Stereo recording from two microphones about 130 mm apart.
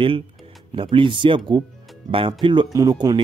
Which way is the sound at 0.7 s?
40° right (ahead or behind).